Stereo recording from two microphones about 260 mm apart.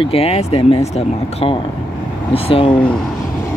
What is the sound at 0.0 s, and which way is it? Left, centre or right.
Speech, left.